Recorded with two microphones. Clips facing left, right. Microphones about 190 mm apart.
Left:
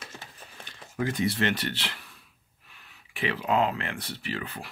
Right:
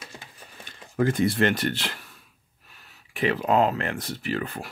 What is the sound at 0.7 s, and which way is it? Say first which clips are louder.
Speech: right 6 dB; 50° right (ahead or behind).